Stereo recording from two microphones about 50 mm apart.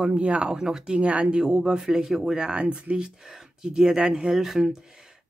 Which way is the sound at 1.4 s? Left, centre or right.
Centre.